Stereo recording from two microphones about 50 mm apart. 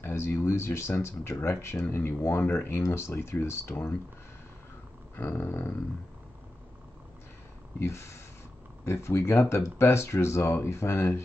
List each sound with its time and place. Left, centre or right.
0.0 s speech: left
5.1 s a sound: left
7.8 s speech: left